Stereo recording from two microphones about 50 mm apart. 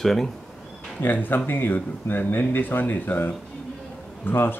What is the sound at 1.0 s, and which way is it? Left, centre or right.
Speech, left.